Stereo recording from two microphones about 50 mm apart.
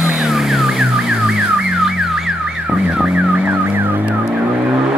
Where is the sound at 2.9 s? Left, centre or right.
Right.